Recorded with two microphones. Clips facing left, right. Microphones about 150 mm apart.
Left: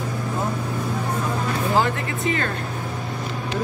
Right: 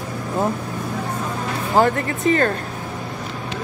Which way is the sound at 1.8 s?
45° right (ahead or behind).